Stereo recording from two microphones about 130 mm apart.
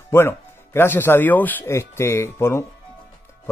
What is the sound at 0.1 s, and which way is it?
Speech, 20° left (ahead or behind).